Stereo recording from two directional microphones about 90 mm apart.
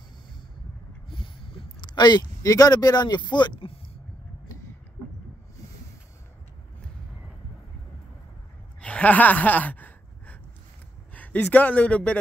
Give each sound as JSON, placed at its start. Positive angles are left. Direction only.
{"t": 1.0, "sound": "a sound", "side_deg": 70}
{"t": 1.9, "sound": "speech", "side_deg": 50}
{"t": 8.8, "sound": "gasp", "side_deg": 15}
{"t": 11.4, "sound": "speech", "side_deg": 15}